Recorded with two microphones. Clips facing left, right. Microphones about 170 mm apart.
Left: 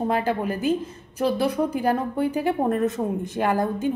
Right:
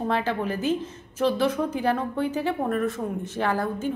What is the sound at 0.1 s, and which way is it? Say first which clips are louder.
A woman's voice: left 2 dB; 15° left (ahead or behind).